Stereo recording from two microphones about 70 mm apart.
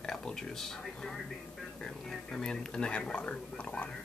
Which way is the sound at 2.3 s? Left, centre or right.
Centre.